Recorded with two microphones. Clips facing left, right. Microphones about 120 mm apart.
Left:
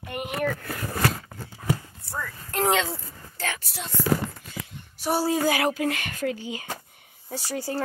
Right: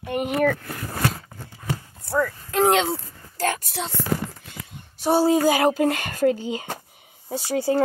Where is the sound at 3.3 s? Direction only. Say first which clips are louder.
Right 8 dB; 45° right (ahead or behind).